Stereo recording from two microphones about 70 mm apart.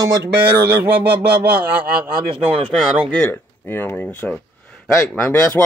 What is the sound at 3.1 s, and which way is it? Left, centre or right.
Speech, left.